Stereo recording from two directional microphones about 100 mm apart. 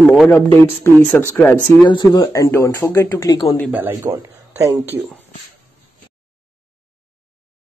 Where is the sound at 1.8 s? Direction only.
50° left (ahead or behind).